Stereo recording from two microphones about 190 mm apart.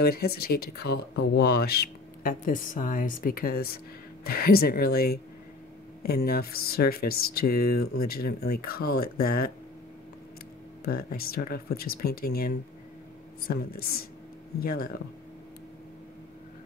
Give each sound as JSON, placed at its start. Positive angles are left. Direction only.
{"t": 0.0, "sound": "speech", "side_deg": 55}
{"t": 10.9, "sound": "speech", "side_deg": 50}